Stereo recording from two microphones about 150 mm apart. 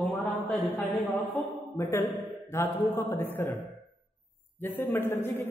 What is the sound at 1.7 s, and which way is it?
A man's voice, 20° left (ahead or behind).